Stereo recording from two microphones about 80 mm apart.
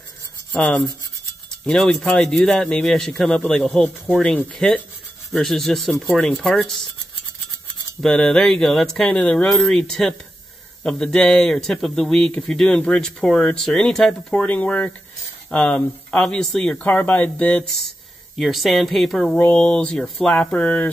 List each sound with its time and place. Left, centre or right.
0.5 s rub: centre
1.7 s speech: centre
8.0 s speech: centre
18.4 s speech: centre
19.3 s speech: centre